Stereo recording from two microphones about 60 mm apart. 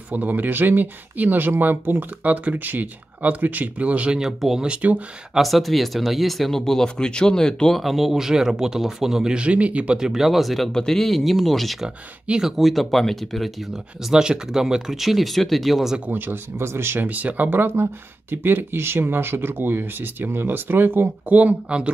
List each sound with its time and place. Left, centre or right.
0.1 s speech: right
4.2 s speech: centre
4.6 s speech: right
5.3 s speech: centre
7.8 s speech: centre; by 9.9 s right
9.9 s speech: centre
14.1 s speech: centre
16.1 s speech: right
21.3 s speech: right